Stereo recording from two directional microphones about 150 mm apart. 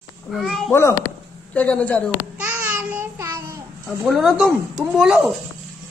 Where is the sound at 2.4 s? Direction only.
10° right (ahead or behind).